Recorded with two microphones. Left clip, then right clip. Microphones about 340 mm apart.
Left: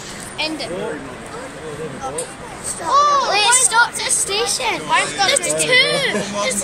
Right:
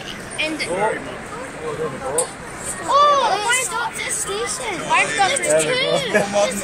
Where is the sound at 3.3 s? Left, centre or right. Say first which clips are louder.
Left 6 dB; left.